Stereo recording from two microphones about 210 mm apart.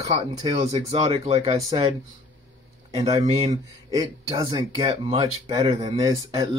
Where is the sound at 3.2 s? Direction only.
30° right (ahead or behind).